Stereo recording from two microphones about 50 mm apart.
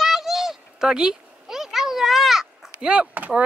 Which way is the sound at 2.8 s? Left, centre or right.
Right.